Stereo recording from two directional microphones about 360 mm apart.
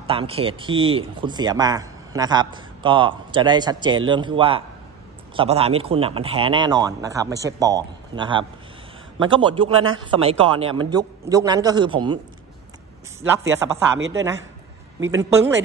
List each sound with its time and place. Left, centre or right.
0.0 s speech: centre
13.6 s speech: centre
13.9 s a woman's voice: right
15.0 s speech: centre